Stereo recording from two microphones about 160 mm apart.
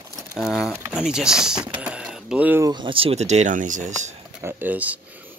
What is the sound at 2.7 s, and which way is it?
Speech, 30° right (ahead or behind).